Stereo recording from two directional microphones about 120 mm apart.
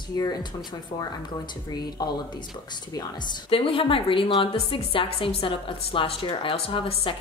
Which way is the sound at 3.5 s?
50° left (ahead or behind).